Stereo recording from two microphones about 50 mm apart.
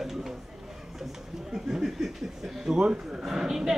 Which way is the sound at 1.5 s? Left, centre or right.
Centre.